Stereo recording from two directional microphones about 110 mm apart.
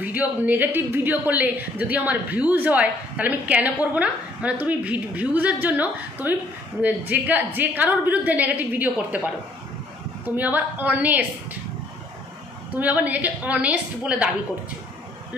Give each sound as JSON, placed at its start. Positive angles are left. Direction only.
{"t": 0.0, "sound": "a woman's voice", "side_deg": -15}
{"t": 12.7, "sound": "a woman's voice", "side_deg": -15}